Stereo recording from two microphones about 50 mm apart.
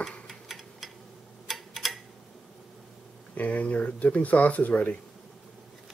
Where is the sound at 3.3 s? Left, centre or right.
Left.